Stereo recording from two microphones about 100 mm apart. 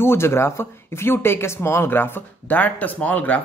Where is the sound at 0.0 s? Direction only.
25° left (ahead or behind).